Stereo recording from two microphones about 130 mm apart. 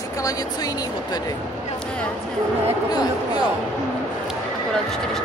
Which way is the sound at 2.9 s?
30° left (ahead or behind).